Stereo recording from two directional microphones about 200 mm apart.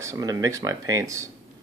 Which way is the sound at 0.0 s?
15° right (ahead or behind).